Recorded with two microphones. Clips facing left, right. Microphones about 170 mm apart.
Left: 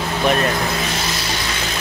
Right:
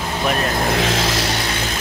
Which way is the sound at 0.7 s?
90° right.